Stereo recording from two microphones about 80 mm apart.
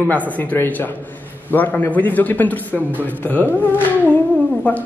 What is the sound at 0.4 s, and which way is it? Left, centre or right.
Speech, left.